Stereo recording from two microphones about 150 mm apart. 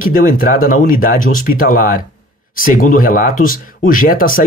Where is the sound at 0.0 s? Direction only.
65° left (ahead or behind).